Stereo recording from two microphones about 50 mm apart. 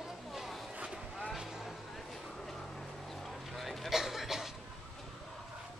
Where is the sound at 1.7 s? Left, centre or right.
Centre.